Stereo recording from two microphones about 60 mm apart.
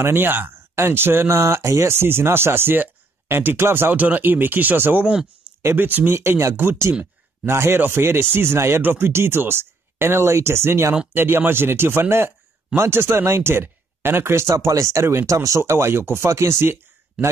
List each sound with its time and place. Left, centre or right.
0.0 s speech: right
3.9 s speech: right